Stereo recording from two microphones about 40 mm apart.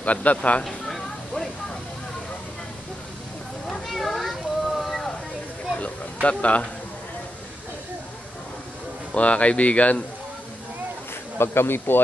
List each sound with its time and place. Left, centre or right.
0.0 s speech: left
0.7 s a sound: centre
3.8 s a sound: centre
6.2 s speech: left
9.1 s speech: left
11.3 s speech: left